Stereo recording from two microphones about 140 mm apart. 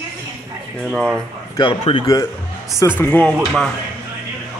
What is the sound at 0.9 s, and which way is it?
Speech, 5° left (ahead or behind).